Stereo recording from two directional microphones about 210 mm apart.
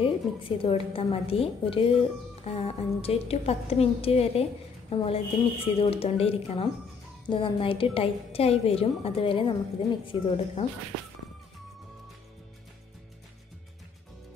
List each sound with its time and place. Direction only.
0.0 s a woman's voice: 25° left (ahead or behind)